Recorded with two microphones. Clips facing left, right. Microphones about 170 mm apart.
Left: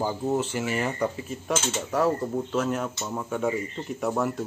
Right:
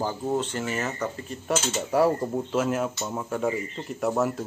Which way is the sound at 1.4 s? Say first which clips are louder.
Right 2 dB; 10° right (ahead or behind).